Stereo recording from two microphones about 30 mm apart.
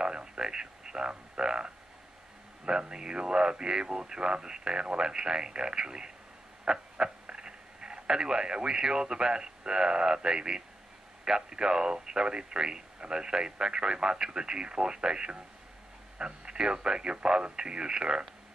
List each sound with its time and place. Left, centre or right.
0.0 s speech: right
6.7 s a sound: right
8.1 s speech: right